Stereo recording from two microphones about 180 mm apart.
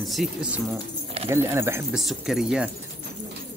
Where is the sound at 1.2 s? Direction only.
15° right (ahead or behind).